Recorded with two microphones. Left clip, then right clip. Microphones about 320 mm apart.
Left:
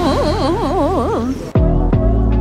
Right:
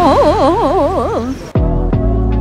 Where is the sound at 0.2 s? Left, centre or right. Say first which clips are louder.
Right 7 dB; centre.